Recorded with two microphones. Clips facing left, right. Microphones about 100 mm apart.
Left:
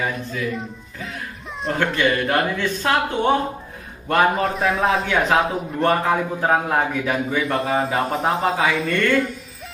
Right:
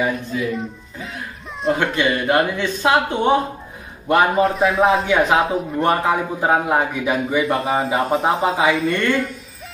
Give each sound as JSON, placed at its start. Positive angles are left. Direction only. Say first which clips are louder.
{"t": 0.0, "sound": "speech", "louder": "right 4 dB", "side_deg": -20}
{"t": 1.8, "sound": "a man's voice", "louder": "even", "side_deg": -15}
{"t": 4.4, "sound": "speech", "louder": "right 4 dB", "side_deg": 0}
{"t": 5.8, "sound": "a man's voice", "louder": "even", "side_deg": -15}